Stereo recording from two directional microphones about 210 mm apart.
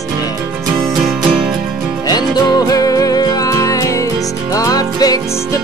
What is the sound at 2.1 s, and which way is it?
Music, 20° left (ahead or behind).